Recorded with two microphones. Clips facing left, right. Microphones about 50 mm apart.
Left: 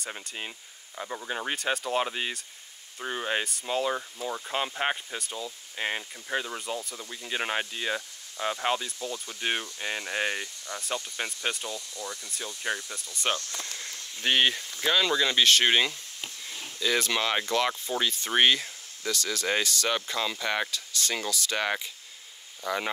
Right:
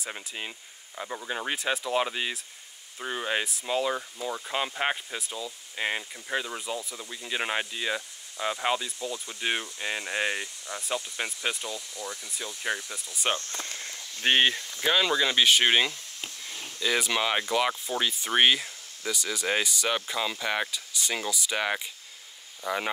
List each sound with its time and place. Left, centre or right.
0.0 s cricket: centre
13.4 s speech: right
14.4 s speech: centre